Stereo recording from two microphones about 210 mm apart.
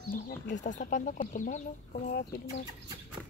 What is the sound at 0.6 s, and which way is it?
Speech, 35° left (ahead or behind).